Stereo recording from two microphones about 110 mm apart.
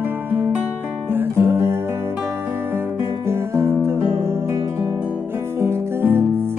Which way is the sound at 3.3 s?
25° right (ahead or behind).